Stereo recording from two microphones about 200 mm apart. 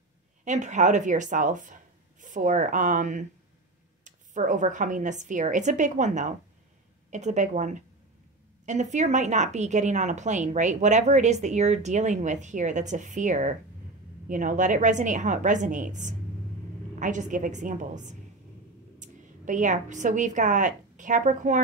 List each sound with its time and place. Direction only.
0.5 s a woman's voice: 35° right (ahead or behind)